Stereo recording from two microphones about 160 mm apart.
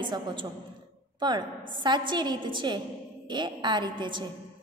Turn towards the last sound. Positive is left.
turn(degrees=-30)  # may be behind; listen again after turning